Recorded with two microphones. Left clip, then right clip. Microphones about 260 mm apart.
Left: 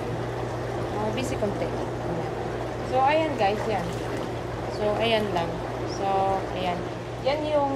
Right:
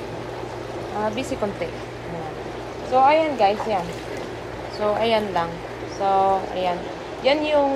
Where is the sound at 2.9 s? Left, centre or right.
Right.